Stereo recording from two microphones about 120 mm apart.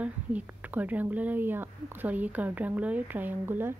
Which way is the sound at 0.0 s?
10° right (ahead or behind).